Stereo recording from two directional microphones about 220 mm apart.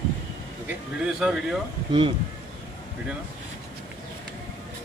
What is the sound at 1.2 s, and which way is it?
Speech, centre (ahead or behind).